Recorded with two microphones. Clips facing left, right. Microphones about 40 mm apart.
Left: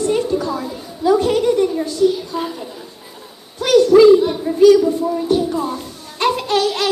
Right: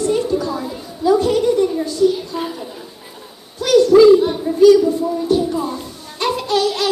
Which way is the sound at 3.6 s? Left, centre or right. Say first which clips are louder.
Even; left.